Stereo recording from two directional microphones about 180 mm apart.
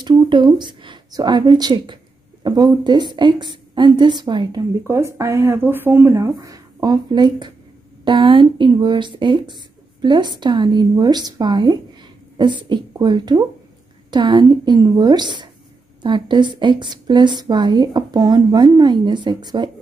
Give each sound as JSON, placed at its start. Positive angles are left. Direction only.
{"t": 0.0, "sound": "a woman's voice", "side_deg": -25}